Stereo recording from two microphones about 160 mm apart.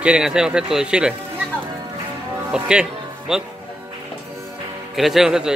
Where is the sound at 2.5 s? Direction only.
5° right (ahead or behind).